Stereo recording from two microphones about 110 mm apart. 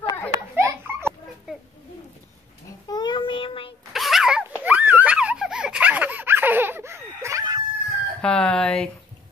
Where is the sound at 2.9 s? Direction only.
40° left (ahead or behind).